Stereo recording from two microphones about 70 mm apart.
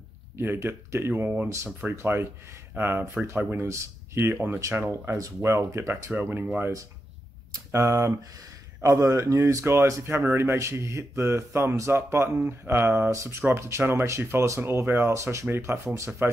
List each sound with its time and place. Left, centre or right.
0.4 s speech: right
3.6 s speech: right
7.5 s speech: right